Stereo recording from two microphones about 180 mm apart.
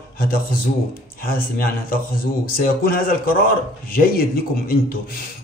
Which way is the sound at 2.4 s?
50° left (ahead or behind).